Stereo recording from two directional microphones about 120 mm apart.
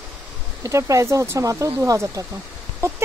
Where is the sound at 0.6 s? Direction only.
25° right (ahead or behind).